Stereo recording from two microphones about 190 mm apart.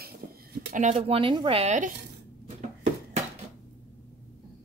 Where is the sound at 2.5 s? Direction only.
35° right (ahead or behind).